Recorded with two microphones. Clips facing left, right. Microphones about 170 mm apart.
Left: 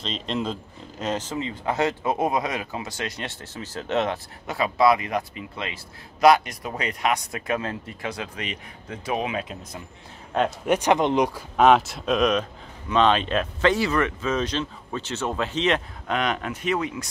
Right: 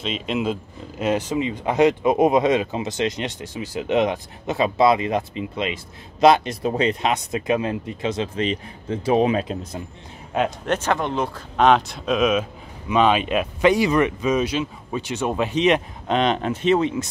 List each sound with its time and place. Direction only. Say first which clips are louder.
0.0 s speech: right 4 dB; 5° right (ahead or behind); by 9.8 s 30° right (ahead or behind)
10.6 s speech: left 2 dB; 15° left (ahead or behind); by 17.1 s 25° right (ahead or behind)